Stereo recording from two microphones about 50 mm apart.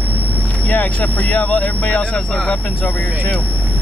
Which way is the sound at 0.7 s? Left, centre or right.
Left.